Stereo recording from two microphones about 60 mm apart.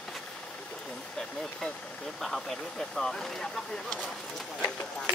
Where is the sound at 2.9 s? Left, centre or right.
Centre.